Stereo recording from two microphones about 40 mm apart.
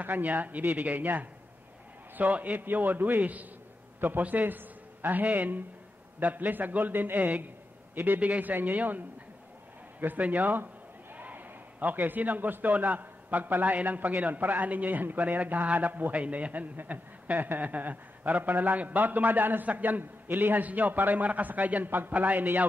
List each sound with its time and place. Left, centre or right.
0.0 s a man's voice: right
2.1 s a man's voice: right
7.9 s a man's voice: right
8.2 s a man's voice: right